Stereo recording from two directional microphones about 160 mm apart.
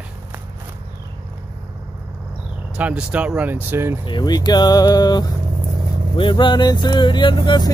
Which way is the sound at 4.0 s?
30° left (ahead or behind).